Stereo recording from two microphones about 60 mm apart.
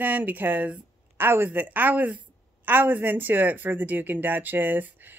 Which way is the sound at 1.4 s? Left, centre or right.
Right.